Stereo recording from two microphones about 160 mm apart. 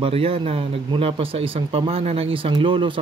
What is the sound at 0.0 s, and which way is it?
Speech, 35° right (ahead or behind).